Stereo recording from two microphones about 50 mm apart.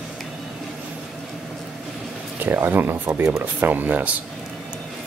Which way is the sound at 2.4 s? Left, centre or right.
Right.